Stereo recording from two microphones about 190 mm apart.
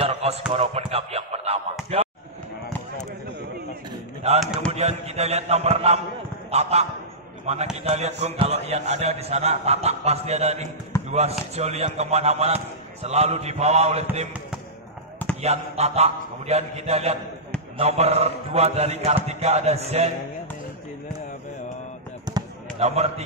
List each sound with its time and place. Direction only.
0.0 s basketball bounce: 35° right (ahead or behind)
0.5 s a man's voice: 30° right (ahead or behind)
4.4 s speech: centre (ahead or behind)
4.7 s a man's voice: 35° right (ahead or behind)
15.4 s a man's voice: 35° right (ahead or behind)
22.8 s a man's voice: 35° right (ahead or behind)